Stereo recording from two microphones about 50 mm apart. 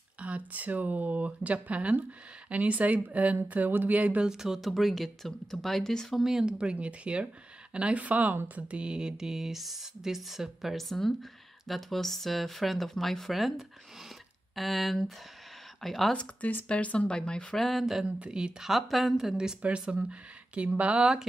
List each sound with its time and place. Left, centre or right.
0.2 s speech: right
4.2 s speech: centre
6.4 s speech: right; by 16.1 s centre
16.3 s speech: left; by 17.6 s centre
17.6 s speech: centre
18.0 s speech: right
18.7 s speech: centre
19.8 s speech: right
21.0 s speech: centre